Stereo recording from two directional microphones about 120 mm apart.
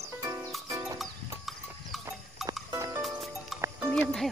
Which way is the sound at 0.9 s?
Centre (ahead or behind).